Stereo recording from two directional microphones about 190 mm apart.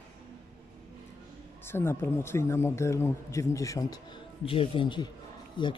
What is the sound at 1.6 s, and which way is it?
A man's voice, 15° left (ahead or behind).